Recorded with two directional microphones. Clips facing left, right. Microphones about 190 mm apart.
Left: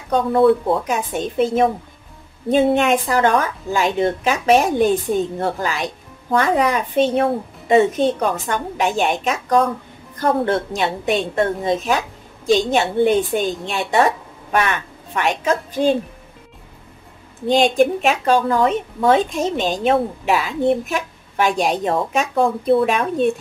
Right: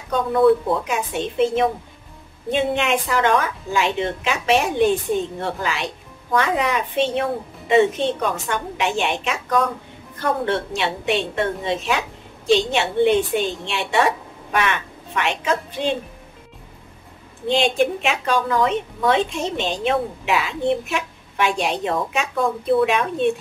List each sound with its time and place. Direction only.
0.1 s a woman's voice: 35° left (ahead or behind)
17.5 s a woman's voice: 40° left (ahead or behind)